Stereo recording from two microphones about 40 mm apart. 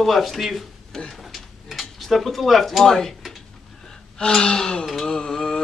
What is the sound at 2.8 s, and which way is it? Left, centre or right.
Speech, centre.